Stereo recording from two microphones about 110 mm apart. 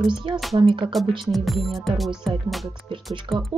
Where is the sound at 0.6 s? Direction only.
45° right (ahead or behind).